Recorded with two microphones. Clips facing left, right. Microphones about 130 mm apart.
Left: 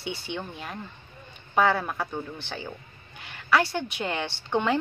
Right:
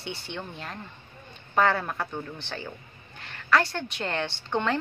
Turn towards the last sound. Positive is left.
turn(degrees=10)  # may be behind; listen again after turning